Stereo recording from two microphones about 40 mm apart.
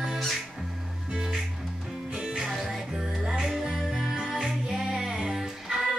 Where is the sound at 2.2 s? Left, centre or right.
Centre.